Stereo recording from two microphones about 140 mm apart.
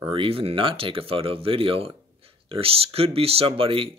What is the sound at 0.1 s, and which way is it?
Speech, 40° right (ahead or behind).